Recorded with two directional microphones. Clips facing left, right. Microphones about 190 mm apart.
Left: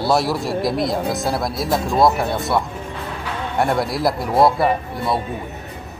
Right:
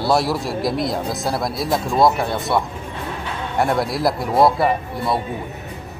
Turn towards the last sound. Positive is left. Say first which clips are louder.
# even
turn(degrees=0)  # may be behind; listen again after turning